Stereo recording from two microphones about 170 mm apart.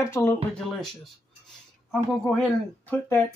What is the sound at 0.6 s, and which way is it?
Speech, centre (ahead or behind).